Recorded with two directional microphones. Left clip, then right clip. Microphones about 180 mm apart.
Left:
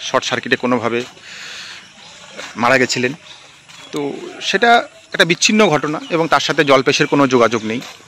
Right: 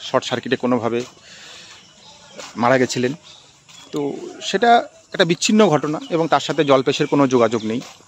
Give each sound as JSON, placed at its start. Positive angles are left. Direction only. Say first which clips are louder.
{"t": 0.0, "sound": "speech", "louder": "left 3 dB", "side_deg": -15}
{"t": 5.8, "sound": "speech", "louder": "left 3 dB", "side_deg": -5}